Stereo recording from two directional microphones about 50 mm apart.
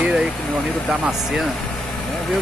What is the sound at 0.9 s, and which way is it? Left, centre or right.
Speech, centre.